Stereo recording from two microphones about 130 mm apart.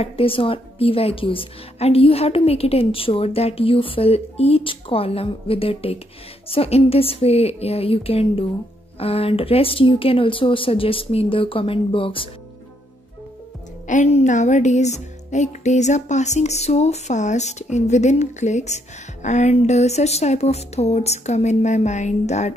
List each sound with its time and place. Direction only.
0.0 s a woman's voice: 45° left (ahead or behind)
13.8 s speech: 65° left (ahead or behind)